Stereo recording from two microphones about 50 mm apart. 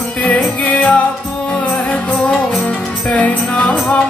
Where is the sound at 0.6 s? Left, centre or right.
Left.